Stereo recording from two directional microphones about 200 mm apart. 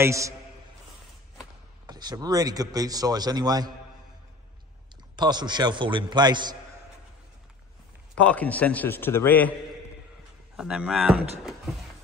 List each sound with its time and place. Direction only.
0.0 s a man's voice: 15° right (ahead or behind)
1.9 s speech: 20° right (ahead or behind)
5.1 s speech: 20° right (ahead or behind)
8.2 s a man's voice: 5° left (ahead or behind)
10.5 s speech: 5° right (ahead or behind)